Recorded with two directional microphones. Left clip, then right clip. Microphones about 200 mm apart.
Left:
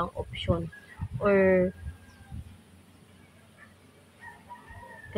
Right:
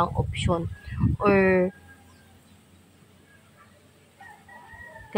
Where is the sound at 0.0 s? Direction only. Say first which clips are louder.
Right 6 dB; 35° right (ahead or behind).